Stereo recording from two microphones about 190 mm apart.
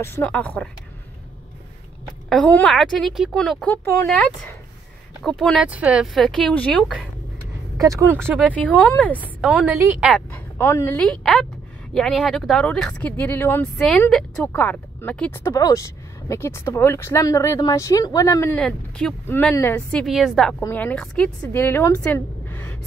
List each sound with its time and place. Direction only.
0.0 s speech: 10° left (ahead or behind)
2.2 s speech: 5° left (ahead or behind)
5.2 s speech: centre (ahead or behind)
7.8 s speech: 15° right (ahead or behind)
8.5 s speech: 5° left (ahead or behind)
9.4 s speech: 5° right (ahead or behind)
10.3 s speech: 15° left (ahead or behind)